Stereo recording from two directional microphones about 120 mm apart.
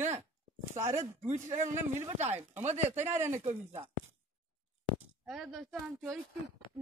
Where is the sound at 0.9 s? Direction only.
75° right (ahead or behind).